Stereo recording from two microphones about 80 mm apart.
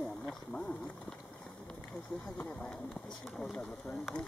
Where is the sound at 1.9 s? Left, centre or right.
Centre.